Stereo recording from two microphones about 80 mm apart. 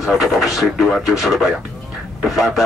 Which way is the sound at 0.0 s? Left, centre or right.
Centre.